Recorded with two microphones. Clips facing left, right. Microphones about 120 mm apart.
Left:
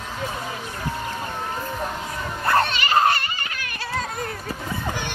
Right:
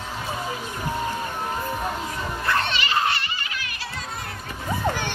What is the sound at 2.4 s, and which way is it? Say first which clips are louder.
Children playing: left 5 dB; 45° left (ahead or behind).